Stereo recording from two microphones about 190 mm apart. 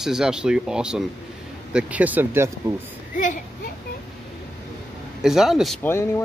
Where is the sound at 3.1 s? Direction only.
45° left (ahead or behind).